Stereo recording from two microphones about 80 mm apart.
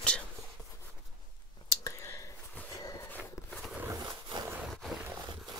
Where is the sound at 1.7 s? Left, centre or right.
Left.